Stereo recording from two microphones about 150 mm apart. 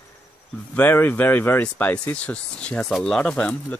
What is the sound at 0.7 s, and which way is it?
Speech, 15° left (ahead or behind).